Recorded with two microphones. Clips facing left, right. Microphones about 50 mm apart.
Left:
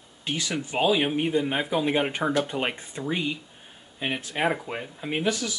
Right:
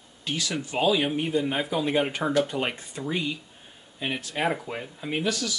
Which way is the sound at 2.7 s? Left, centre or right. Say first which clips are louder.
Left 1 dB; centre.